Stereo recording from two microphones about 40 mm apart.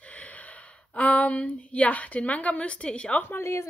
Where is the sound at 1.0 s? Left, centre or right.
Left.